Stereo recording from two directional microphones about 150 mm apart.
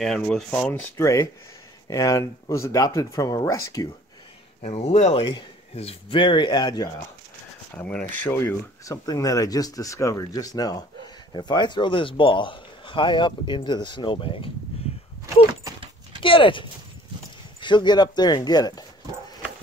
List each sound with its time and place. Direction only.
0.0 s speech: 5° left (ahead or behind); by 3.9 s 20° left (ahead or behind)
4.6 s speech: 50° left (ahead or behind)
5.2 s a man's voice: 35° left (ahead or behind)
7.7 s a man's voice: 10° left (ahead or behind); by 14.5 s 35° left (ahead or behind)
16.2 s clip-clop: 35° left (ahead or behind)
17.6 s speech: 30° left (ahead or behind)